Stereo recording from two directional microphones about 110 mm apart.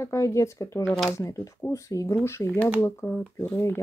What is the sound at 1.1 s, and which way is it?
Speech, 30° left (ahead or behind).